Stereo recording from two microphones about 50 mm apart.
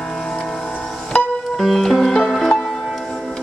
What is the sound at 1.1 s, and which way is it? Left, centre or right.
Music, left.